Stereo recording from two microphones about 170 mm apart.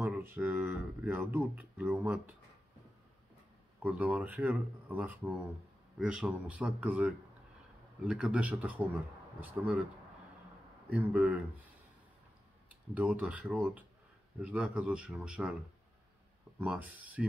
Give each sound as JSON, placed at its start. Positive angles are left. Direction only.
{"t": 0.0, "sound": "speech", "side_deg": -10}
{"t": 3.8, "sound": "speech", "side_deg": -10}
{"t": 10.9, "sound": "speech", "side_deg": -10}
{"t": 12.9, "sound": "speech", "side_deg": -10}
{"t": 16.5, "sound": "speech", "side_deg": -5}